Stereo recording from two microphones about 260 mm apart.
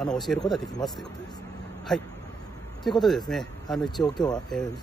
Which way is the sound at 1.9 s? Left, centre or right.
Centre.